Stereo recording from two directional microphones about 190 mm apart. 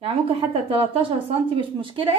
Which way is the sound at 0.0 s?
30° right (ahead or behind).